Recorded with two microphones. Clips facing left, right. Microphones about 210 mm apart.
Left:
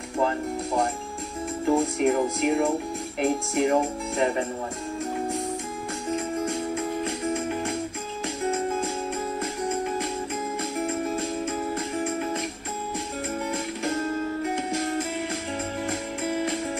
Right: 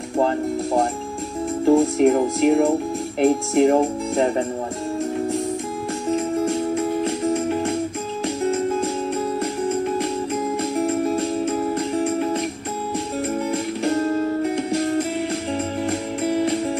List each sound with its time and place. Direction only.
1.7 s speech: 40° right (ahead or behind)
13.5 s music: 35° right (ahead or behind)
15.5 s music: 35° right (ahead or behind)